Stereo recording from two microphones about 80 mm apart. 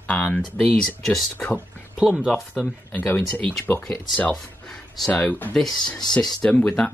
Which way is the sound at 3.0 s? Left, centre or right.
Left.